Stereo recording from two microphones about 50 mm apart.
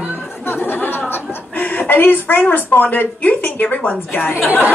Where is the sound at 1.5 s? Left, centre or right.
Left.